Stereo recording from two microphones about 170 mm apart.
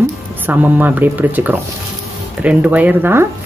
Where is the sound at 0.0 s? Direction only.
10° right (ahead or behind).